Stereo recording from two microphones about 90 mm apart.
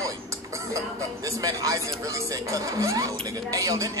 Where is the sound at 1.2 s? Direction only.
40° right (ahead or behind).